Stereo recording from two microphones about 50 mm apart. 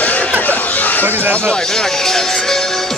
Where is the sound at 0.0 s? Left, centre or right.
Left.